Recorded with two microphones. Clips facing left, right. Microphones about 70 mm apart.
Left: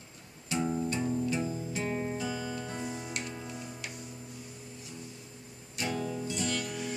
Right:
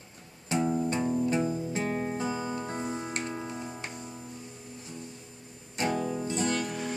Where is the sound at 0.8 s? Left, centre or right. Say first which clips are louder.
Right 3 dB; right.